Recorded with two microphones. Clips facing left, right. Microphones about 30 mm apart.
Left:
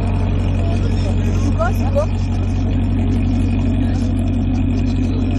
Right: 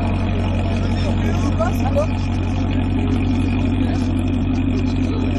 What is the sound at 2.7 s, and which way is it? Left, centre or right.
Vehicle, right.